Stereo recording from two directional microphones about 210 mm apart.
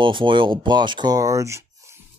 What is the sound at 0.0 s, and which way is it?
Speech, 25° right (ahead or behind).